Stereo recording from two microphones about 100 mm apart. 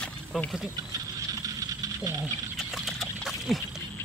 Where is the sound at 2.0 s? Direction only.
35° right (ahead or behind).